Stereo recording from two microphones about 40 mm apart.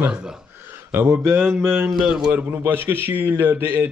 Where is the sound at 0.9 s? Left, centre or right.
Right.